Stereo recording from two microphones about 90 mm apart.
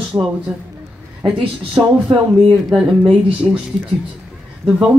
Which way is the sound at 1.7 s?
60° right (ahead or behind).